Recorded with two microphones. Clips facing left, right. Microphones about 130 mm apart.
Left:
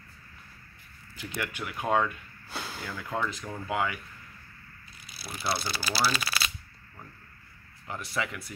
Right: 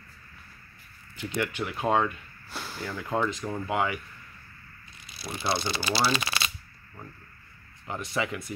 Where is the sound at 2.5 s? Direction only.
20° left (ahead or behind).